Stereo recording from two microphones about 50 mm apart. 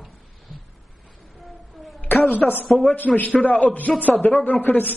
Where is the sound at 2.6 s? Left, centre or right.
Centre.